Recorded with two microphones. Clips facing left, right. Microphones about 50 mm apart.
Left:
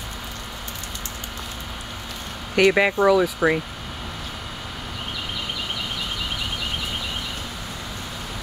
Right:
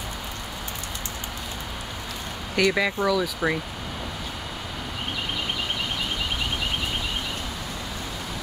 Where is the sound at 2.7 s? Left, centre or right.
Left.